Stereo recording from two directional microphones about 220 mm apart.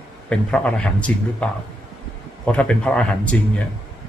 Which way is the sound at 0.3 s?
5° left (ahead or behind).